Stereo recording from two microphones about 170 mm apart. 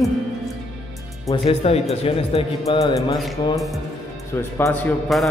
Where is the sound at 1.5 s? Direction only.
35° left (ahead or behind).